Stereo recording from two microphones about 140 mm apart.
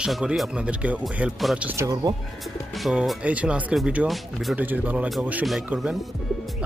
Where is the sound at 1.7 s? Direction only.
25° right (ahead or behind).